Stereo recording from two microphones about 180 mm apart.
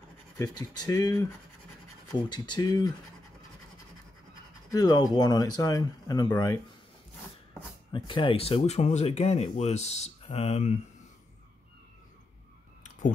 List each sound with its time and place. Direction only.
0.4 s speech: 20° left (ahead or behind)
2.2 s speech: 25° left (ahead or behind)
4.6 s speech: 20° left (ahead or behind)
7.9 s speech: 25° left (ahead or behind)